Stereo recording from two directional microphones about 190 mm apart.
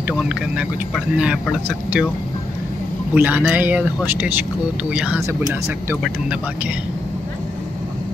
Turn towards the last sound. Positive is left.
turn(degrees=-10)  # may be behind; listen again after turning